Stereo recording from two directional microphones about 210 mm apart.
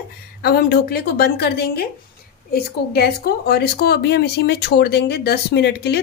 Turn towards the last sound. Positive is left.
turn(degrees=50)  # may be behind; listen again after turning